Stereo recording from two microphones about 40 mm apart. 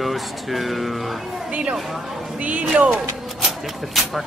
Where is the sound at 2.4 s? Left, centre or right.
Right.